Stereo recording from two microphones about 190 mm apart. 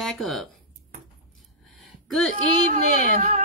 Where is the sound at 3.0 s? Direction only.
45° right (ahead or behind).